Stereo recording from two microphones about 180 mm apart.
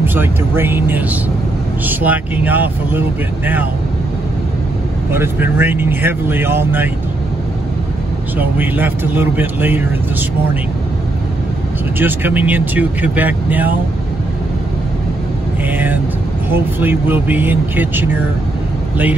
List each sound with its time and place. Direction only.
0.0 s speech: 10° right (ahead or behind)
5.1 s speech: 15° right (ahead or behind)
8.4 s speech: 10° right (ahead or behind)
12.0 s speech: 10° right (ahead or behind)
16.4 s speech: 10° right (ahead or behind)